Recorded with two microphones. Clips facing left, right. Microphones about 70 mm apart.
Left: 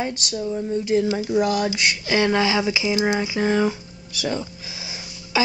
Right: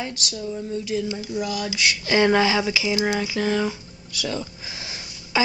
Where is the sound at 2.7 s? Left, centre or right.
Left.